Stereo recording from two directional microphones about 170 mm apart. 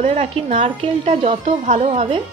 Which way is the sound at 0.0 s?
40° right (ahead or behind).